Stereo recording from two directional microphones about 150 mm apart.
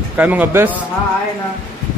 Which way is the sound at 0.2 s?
10° right (ahead or behind).